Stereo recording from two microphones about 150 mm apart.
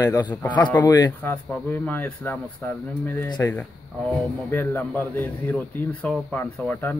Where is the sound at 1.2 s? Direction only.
10° left (ahead or behind).